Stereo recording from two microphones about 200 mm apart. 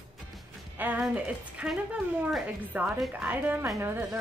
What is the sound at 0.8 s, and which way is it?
A woman's voice, 10° right (ahead or behind).